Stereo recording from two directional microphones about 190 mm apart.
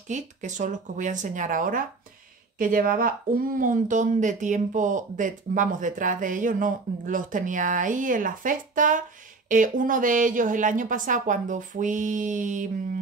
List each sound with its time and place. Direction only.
0.1 s speech: 40° right (ahead or behind)